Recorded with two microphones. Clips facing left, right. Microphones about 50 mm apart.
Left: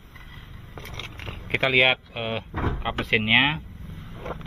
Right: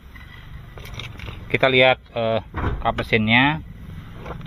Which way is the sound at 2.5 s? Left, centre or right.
Centre.